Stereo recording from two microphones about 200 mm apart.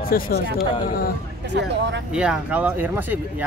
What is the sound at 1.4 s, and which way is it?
Speech, 60° right (ahead or behind).